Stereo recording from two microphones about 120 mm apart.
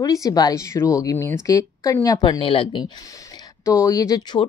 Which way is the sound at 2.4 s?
45° left (ahead or behind).